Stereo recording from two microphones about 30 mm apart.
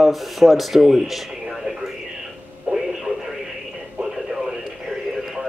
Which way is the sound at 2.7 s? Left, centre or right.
Right.